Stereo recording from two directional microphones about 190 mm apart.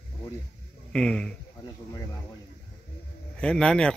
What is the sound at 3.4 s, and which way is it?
Speech, 5° left (ahead or behind).